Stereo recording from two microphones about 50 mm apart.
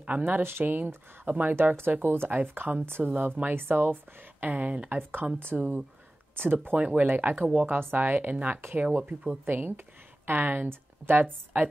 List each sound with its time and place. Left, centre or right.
0.4 s speech: right
0.7 s speech: right
1.8 s speech: right
4.6 s speech: right
4.9 s speech: right
6.8 s speech: right
8.7 s speech: right
9.4 s speech: right